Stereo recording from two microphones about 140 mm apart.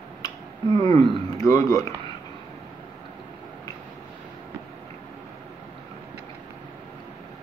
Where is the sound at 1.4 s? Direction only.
25° left (ahead or behind).